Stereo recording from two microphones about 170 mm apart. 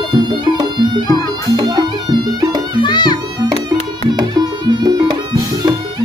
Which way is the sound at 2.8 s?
25° left (ahead or behind).